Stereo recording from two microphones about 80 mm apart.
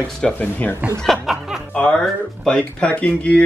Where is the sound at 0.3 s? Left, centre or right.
Left.